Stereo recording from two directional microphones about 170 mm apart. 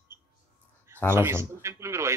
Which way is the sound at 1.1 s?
15° right (ahead or behind).